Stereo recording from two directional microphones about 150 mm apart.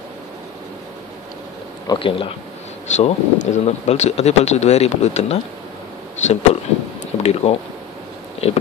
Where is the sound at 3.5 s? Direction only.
50° left (ahead or behind).